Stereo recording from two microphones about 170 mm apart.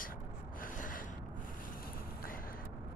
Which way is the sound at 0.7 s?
55° left (ahead or behind).